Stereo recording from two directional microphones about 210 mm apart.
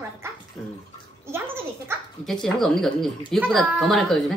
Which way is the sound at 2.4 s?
Centre (ahead or behind).